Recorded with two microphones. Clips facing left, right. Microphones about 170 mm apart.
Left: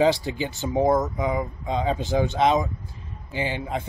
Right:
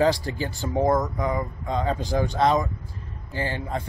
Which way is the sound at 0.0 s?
20° left (ahead or behind).